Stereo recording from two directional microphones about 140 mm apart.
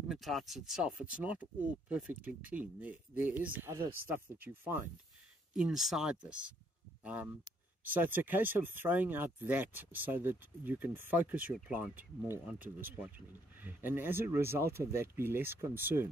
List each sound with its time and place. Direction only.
0.1 s speech: centre (ahead or behind); by 3.9 s 20° right (ahead or behind)
5.5 s speech: 5° right (ahead or behind)
13.6 s speech: 15° right (ahead or behind)